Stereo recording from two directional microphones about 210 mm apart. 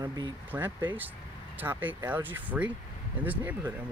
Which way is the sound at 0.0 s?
10° right (ahead or behind).